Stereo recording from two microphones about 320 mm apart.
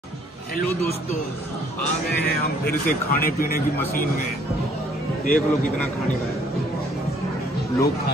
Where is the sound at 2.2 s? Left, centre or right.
Left.